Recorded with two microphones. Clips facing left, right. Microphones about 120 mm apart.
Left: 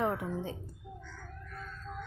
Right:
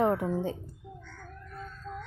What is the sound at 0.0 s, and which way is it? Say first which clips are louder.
Speech: right 6 dB; 35° right (ahead or behind).